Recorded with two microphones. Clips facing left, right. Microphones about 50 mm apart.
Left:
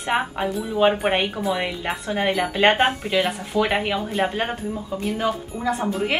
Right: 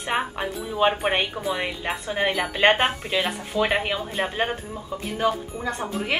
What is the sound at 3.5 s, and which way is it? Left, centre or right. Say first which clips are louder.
Speech: left 2 dB; left.